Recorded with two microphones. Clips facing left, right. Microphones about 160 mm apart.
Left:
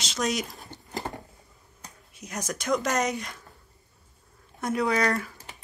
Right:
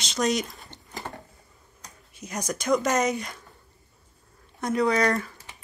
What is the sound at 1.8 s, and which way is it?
Speech, centre (ahead or behind).